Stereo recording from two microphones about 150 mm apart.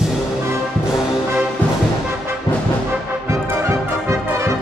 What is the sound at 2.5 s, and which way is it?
Music, 30° left (ahead or behind).